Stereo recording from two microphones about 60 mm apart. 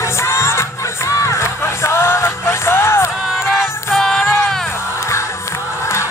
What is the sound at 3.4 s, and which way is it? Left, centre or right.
Music, centre.